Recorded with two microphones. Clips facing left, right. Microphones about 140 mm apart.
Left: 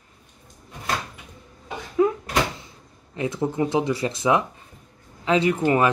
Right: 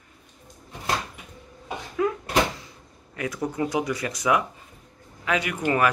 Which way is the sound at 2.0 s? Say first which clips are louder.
Left 5 dB; 25° left (ahead or behind).